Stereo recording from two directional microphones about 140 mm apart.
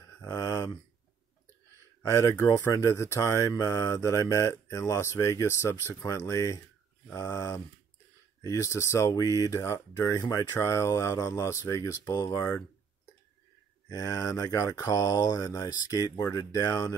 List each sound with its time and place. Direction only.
0.2 s a sound: 25° left (ahead or behind)
2.0 s speech: 25° left (ahead or behind)
13.8 s speech: 25° left (ahead or behind)